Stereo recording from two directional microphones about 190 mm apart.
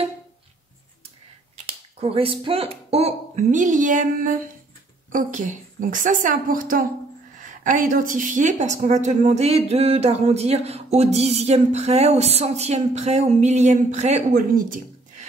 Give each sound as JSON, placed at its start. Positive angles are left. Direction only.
{"t": 2.0, "sound": "finger snapping", "side_deg": -30}
{"t": 2.4, "sound": "a woman's voice", "side_deg": -30}